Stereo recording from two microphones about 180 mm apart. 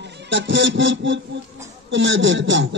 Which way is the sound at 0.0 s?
75° right (ahead or behind).